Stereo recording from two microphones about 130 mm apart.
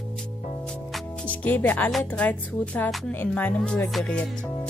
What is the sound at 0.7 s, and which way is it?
Music, centre (ahead or behind).